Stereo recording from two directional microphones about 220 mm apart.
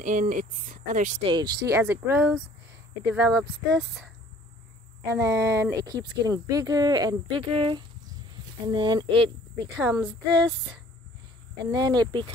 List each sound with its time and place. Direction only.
0.0 s speech: 35° right (ahead or behind)
1.2 s speech: 20° right (ahead or behind)
3.1 s a sound: 5° right (ahead or behind)
5.0 s speech: 10° right (ahead or behind)
9.8 s a sound: centre (ahead or behind)
11.6 s speech: 15° right (ahead or behind)